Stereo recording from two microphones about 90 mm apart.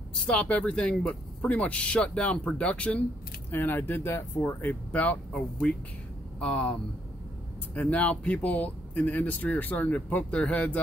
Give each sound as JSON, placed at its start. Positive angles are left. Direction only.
{"t": 0.1, "sound": "speech", "side_deg": 10}